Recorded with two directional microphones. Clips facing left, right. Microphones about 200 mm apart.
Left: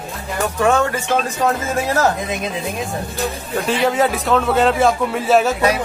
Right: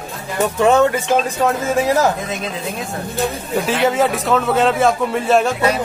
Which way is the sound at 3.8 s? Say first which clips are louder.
Even; centre (ahead or behind).